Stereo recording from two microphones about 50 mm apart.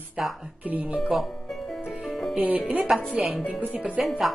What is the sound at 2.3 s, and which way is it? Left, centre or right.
Speech, right.